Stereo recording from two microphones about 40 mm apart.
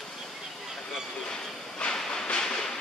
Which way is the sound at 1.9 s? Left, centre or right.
Centre.